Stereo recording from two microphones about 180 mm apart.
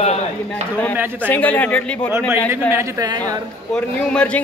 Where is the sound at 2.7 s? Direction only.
15° right (ahead or behind).